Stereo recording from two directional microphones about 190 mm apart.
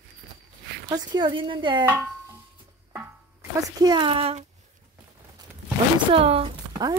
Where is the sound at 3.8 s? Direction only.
25° right (ahead or behind).